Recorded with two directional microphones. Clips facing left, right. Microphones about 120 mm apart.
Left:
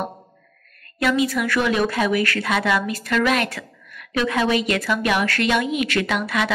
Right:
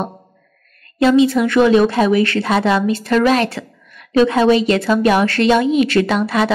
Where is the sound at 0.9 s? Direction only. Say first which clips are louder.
Right 8 dB; 25° right (ahead or behind).